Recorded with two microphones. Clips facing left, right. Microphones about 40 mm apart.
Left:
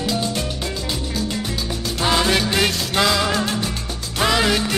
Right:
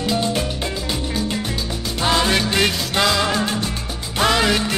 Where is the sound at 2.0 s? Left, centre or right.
Centre.